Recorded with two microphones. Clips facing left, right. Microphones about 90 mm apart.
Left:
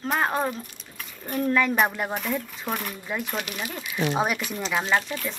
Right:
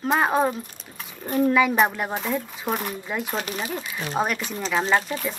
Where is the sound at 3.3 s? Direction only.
35° right (ahead or behind).